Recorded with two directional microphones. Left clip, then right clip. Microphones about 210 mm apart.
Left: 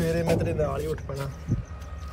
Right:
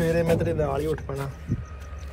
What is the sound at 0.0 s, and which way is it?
A man's voice, centre (ahead or behind).